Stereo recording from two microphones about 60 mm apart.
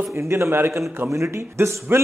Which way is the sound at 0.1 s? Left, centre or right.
Right.